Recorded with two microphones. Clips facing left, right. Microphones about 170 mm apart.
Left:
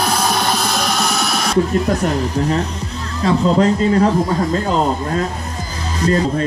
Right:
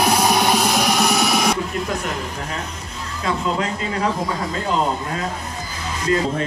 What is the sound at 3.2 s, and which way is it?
Speech, 40° left (ahead or behind).